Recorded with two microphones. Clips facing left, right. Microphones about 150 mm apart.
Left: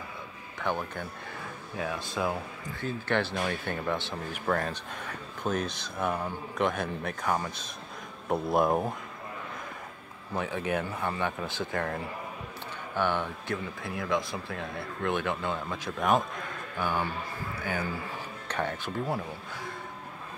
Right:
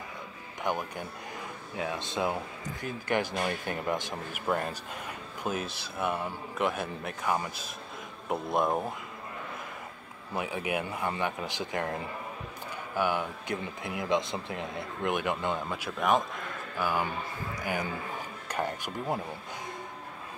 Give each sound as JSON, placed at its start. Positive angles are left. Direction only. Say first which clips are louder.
{"t": 0.6, "sound": "speech", "louder": "even", "side_deg": -15}
{"t": 10.3, "sound": "speech", "louder": "left 1 dB", "side_deg": -10}
{"t": 13.8, "sound": "a man's voice", "louder": "right 1 dB", "side_deg": -20}